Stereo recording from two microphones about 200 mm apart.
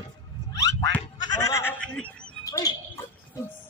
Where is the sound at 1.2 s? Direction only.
20° left (ahead or behind).